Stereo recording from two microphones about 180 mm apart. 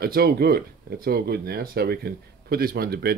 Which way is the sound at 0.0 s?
60° right (ahead or behind).